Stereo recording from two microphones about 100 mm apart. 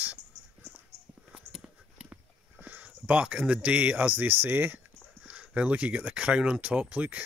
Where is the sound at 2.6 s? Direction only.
15° right (ahead or behind).